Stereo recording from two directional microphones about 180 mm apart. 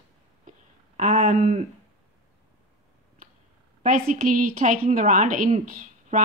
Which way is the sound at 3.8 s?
45° right (ahead or behind).